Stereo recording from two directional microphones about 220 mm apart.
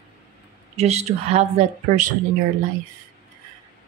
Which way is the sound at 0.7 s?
30° right (ahead or behind).